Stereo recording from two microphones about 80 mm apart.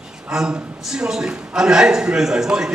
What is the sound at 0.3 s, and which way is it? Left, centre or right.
A woman's voice, centre.